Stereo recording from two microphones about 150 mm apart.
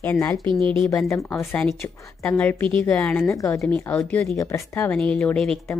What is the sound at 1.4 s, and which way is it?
A woman's voice, 5° left (ahead or behind).